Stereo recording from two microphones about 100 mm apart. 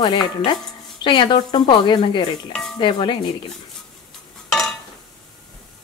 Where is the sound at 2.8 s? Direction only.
55° left (ahead or behind).